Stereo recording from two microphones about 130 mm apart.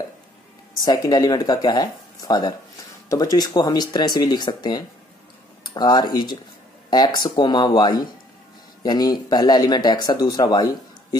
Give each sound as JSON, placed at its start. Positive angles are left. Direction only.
{"t": 0.8, "sound": "speech", "side_deg": 30}